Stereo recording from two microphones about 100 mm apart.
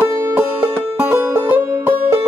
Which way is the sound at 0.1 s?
25° right (ahead or behind).